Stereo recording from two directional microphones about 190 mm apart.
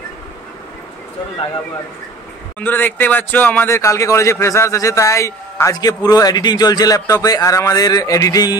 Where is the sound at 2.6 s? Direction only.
10° left (ahead or behind).